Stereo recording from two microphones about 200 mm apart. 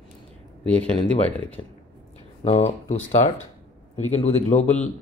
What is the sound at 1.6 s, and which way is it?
Speech, 25° left (ahead or behind).